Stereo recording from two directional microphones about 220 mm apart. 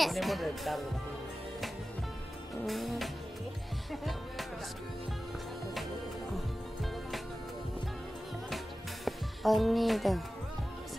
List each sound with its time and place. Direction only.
0.0 s speech: centre (ahead or behind)
2.6 s speech: centre (ahead or behind)
3.9 s music: centre (ahead or behind)
6.3 s music: centre (ahead or behind)
9.0 s speech: centre (ahead or behind)